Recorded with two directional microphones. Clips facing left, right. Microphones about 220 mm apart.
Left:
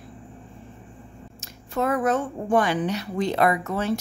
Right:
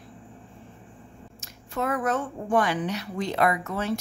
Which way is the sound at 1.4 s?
30° left (ahead or behind).